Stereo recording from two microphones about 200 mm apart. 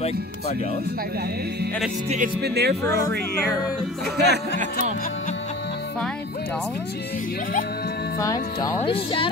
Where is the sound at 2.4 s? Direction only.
55° right (ahead or behind).